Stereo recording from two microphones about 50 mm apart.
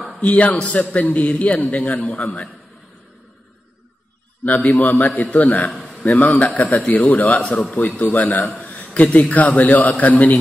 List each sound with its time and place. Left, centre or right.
0.2 s a man's voice: left
4.8 s a man's voice: left